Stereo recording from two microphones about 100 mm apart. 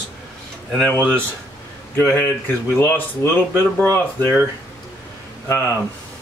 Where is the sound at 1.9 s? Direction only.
25° left (ahead or behind).